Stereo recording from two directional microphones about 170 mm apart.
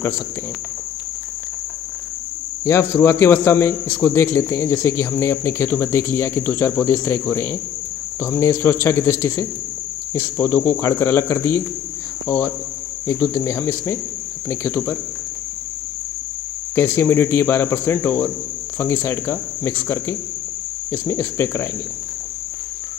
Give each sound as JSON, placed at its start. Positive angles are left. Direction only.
{"t": 2.6, "sound": "a man's voice", "side_deg": 15}
{"t": 16.7, "sound": "a man's voice", "side_deg": 15}